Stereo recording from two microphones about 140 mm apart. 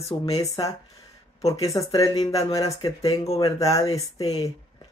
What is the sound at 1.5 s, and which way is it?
Speech, 25° left (ahead or behind).